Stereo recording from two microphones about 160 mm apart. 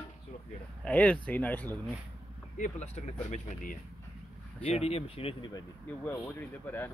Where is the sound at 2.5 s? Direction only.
50° left (ahead or behind); by 5.6 s 35° left (ahead or behind).